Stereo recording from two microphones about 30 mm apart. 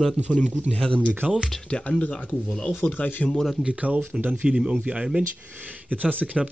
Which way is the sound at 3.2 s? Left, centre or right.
Centre.